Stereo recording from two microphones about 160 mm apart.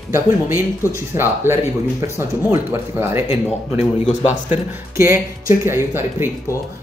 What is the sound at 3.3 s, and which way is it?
Speech, 40° left (ahead or behind).